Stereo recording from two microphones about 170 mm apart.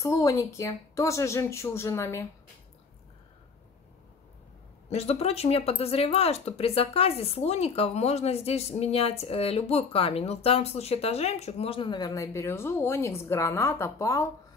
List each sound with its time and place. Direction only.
0.0 s a woman's voice: 20° left (ahead or behind)
4.8 s speech: 40° left (ahead or behind); by 14.2 s 15° left (ahead or behind)